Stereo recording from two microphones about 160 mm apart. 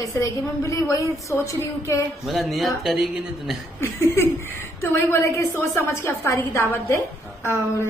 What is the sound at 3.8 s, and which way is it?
A woman's voice, 15° left (ahead or behind).